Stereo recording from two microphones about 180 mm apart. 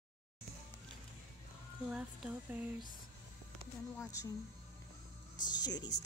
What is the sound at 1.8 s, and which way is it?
Speech, 5° right (ahead or behind).